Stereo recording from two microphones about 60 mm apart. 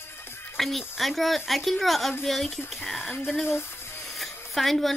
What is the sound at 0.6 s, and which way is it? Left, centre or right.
Child singing, centre.